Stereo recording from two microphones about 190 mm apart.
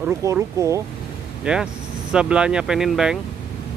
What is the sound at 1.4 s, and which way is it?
Speech, 5° right (ahead or behind).